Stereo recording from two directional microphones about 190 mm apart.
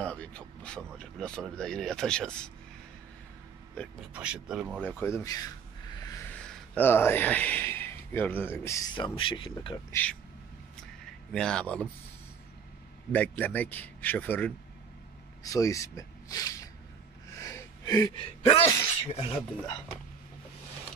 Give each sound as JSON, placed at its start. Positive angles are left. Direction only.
{"t": 0.0, "sound": "speech", "side_deg": 5}
{"t": 4.1, "sound": "speech", "side_deg": -5}
{"t": 4.8, "sound": "speech", "side_deg": 10}
{"t": 6.4, "sound": "a man's voice", "side_deg": 5}
{"t": 11.3, "sound": "speech", "side_deg": 5}
{"t": 13.1, "sound": "speech", "side_deg": 10}
{"t": 17.4, "sound": "sneeze", "side_deg": 15}
{"t": 19.1, "sound": "speech", "side_deg": 30}